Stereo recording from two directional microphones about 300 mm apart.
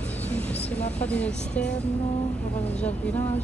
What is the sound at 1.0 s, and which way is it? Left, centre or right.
Speech, centre.